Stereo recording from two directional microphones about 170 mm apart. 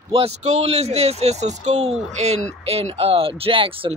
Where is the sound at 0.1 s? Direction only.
40° right (ahead or behind).